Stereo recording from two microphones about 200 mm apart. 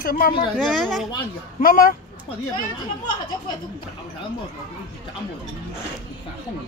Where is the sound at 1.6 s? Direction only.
45° left (ahead or behind).